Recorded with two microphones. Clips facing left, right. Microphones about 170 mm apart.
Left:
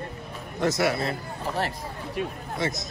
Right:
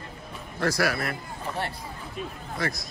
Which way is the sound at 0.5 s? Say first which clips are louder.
Left 2 dB; 20° left (ahead or behind).